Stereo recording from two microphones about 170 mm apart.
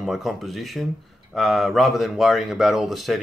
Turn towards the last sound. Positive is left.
turn(degrees=0)  # may be behind; listen again after turning